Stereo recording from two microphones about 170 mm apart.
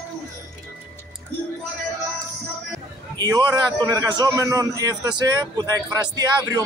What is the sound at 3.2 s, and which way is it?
A man's voice, 25° right (ahead or behind).